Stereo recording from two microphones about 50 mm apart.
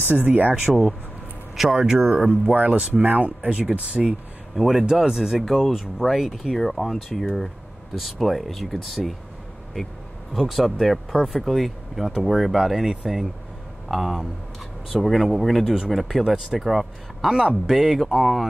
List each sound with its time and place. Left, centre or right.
0.1 s speech: right
1.6 s speech: centre
2.5 s speech: right
4.6 s speech: centre